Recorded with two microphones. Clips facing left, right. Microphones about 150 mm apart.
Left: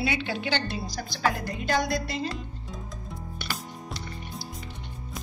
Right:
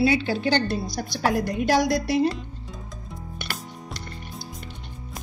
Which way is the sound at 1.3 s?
70° right (ahead or behind).